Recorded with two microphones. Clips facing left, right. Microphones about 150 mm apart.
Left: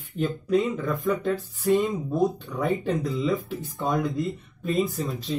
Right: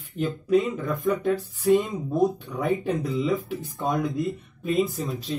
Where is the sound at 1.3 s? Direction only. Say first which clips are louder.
Right 4 dB; 20° right (ahead or behind).